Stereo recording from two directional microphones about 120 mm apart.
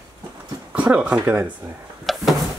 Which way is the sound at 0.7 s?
10° right (ahead or behind).